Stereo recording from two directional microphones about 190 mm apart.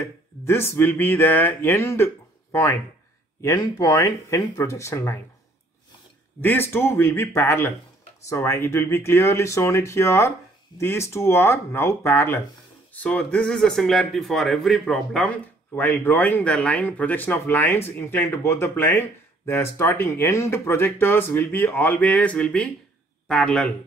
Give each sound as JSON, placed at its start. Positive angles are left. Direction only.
{"t": 0.0, "sound": "speech", "side_deg": 10}
{"t": 6.4, "sound": "speech", "side_deg": 10}